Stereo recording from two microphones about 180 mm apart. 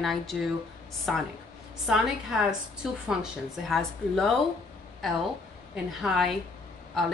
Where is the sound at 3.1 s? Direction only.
Centre (ahead or behind).